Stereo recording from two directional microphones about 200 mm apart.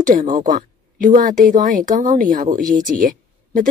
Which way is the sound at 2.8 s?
40° right (ahead or behind).